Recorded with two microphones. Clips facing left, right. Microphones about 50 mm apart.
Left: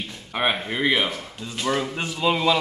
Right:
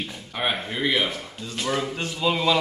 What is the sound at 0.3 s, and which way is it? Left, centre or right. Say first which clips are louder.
Speech: left 3 dB; left.